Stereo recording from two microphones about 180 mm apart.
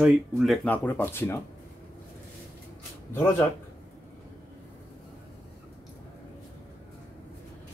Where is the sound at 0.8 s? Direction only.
10° left (ahead or behind).